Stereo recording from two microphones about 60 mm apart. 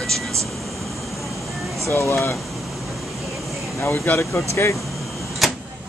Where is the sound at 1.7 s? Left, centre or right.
Left.